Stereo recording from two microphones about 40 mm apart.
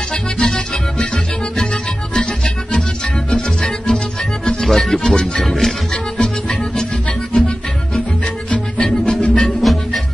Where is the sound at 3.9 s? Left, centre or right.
Left.